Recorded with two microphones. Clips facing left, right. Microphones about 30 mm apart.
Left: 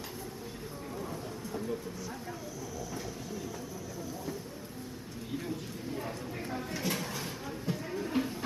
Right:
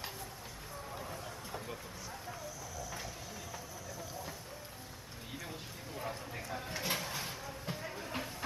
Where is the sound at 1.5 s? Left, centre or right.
Centre.